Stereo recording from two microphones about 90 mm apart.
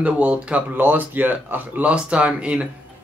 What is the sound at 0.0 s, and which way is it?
Speech, 15° right (ahead or behind).